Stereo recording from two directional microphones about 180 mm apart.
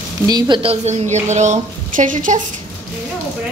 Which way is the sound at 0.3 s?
25° right (ahead or behind).